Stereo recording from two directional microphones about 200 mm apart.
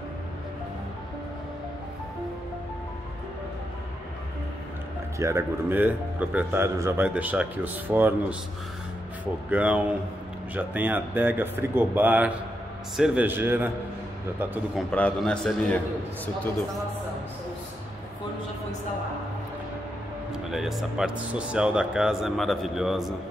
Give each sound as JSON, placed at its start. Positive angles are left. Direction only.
{"t": 5.2, "sound": "speech", "side_deg": -10}
{"t": 14.9, "sound": "speech", "side_deg": 5}
{"t": 20.4, "sound": "speech", "side_deg": 0}